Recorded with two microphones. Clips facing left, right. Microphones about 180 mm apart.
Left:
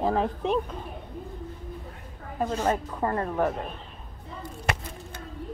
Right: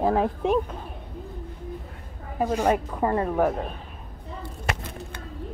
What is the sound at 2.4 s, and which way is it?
Speech, 10° right (ahead or behind).